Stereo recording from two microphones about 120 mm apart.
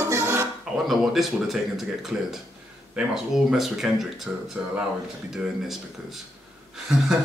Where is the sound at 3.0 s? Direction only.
5° right (ahead or behind).